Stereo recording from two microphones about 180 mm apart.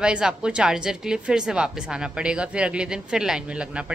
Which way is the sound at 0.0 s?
5° right (ahead or behind).